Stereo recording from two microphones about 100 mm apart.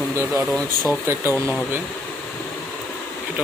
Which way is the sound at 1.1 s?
25° right (ahead or behind).